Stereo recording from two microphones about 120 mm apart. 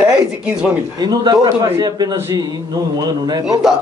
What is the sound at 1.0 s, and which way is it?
A man's voice, 35° right (ahead or behind).